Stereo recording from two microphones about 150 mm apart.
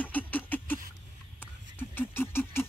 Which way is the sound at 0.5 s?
10° left (ahead or behind).